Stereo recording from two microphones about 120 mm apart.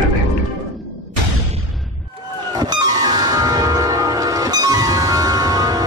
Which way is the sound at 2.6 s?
35° right (ahead or behind).